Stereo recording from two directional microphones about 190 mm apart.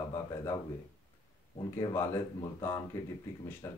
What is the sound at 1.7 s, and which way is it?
Speech, 15° left (ahead or behind).